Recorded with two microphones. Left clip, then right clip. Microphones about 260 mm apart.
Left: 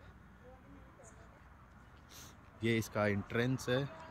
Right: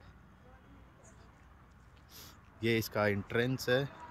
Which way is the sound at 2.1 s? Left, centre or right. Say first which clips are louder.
Right 2 dB; centre.